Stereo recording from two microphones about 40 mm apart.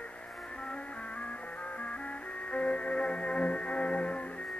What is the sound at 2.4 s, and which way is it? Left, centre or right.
Music, left.